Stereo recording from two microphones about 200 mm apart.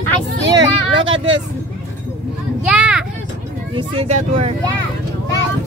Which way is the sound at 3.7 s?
30° right (ahead or behind).